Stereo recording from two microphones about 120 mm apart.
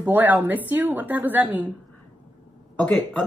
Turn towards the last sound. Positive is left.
turn(degrees=15)  # may be behind; listen again after turning